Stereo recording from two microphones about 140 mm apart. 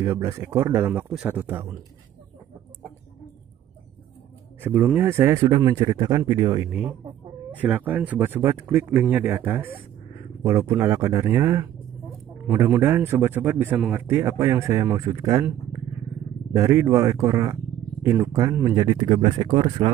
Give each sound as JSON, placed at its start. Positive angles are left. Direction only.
{"t": 0.0, "sound": "a man's voice", "side_deg": -20}
{"t": 4.6, "sound": "a man's voice", "side_deg": -15}
{"t": 6.7, "sound": "a man's voice", "side_deg": -10}
{"t": 12.4, "sound": "a man's voice", "side_deg": -15}
{"t": 14.0, "sound": "speech", "side_deg": -20}
{"t": 16.5, "sound": "speech", "side_deg": -20}